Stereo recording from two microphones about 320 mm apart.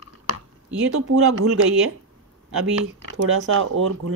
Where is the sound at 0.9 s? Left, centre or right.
Right.